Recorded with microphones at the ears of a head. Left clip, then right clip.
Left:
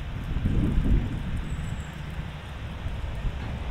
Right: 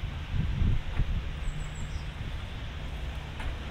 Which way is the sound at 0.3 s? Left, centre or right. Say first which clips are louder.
Left 9 dB; left.